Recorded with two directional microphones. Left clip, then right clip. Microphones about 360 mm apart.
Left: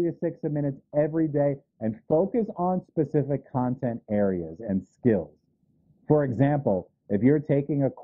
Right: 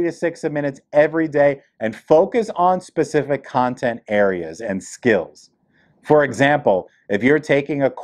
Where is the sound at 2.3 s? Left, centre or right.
Centre.